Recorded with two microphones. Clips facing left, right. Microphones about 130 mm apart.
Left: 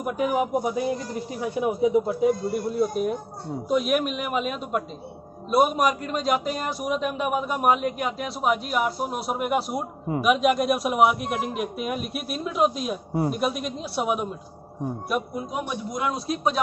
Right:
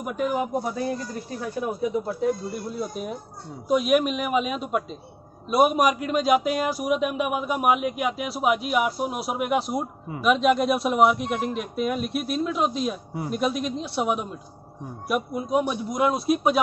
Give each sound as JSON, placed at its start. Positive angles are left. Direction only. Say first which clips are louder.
{"t": 0.0, "sound": "speech", "louder": "left 2 dB", "side_deg": 5}
{"t": 2.7, "sound": "a man's voice", "louder": "left 6 dB", "side_deg": 0}
{"t": 15.3, "sound": "a man's voice", "louder": "right 6 dB", "side_deg": -20}